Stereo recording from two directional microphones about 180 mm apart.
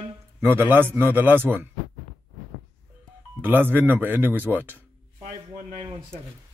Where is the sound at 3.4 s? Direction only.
10° right (ahead or behind).